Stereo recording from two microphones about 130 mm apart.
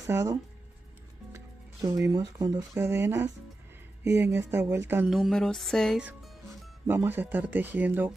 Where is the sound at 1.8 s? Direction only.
25° right (ahead or behind).